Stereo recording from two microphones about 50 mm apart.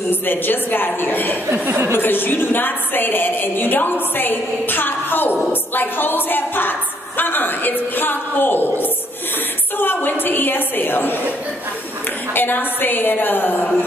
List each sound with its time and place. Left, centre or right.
0.1 s a woman's voice: left
1.5 s speech: right
1.9 s a woman's voice: left
12.4 s a woman's voice: left